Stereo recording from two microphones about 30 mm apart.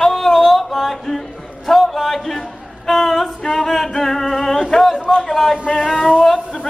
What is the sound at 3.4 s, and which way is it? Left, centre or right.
Music, centre.